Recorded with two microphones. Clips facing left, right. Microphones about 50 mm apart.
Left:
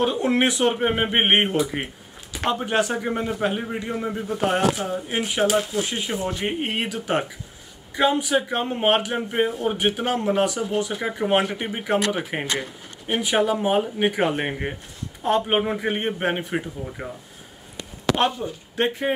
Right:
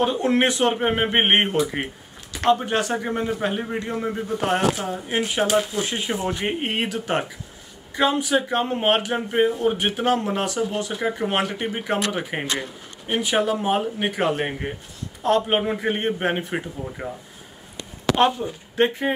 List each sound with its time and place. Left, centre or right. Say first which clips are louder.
0.0 s a man's voice: right 1 dB; centre
6.0 s speech: right 1 dB; centre
6.6 s a man's voice: right 1 dB; centre
15.5 s a man's voice: even; centre
18.4 s a man's voice: right 3 dB; centre